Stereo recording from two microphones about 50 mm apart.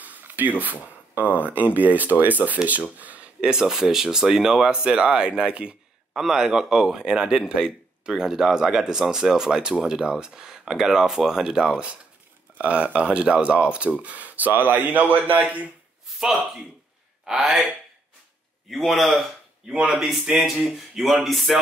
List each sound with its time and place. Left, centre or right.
0.0 s a sound: right
0.6 s speech: right
3.3 s a man's voice: centre
6.1 s a man's voice: centre
12.5 s speech: right
17.3 s a man's voice: centre
18.7 s a sound: centre
19.7 s speech: centre
20.3 s a sound: centre